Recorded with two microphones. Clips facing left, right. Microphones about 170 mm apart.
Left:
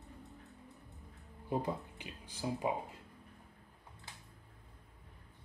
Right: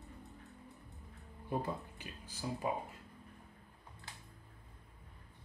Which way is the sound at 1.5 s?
15° left (ahead or behind).